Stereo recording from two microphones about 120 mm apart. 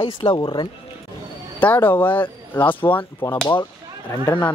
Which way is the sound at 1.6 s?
15° left (ahead or behind).